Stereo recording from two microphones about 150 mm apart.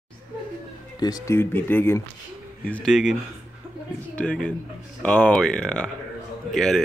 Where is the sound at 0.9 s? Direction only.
25° left (ahead or behind).